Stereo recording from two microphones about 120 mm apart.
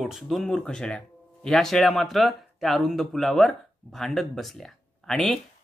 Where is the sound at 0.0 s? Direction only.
Centre (ahead or behind).